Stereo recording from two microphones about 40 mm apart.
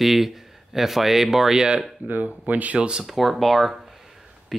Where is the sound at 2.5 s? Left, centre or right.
Right.